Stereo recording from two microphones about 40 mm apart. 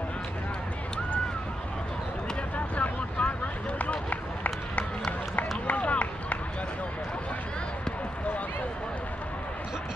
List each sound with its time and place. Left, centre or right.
2.5 s boat: left
4.1 s run: left